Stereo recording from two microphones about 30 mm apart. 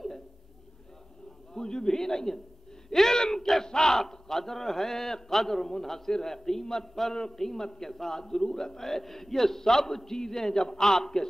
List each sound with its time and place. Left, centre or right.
1.5 s a sound: left
2.9 s a man's voice: centre
4.0 s a man's voice: centre